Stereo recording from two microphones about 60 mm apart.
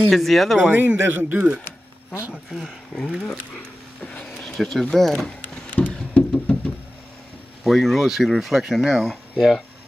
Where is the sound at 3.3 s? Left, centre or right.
Centre.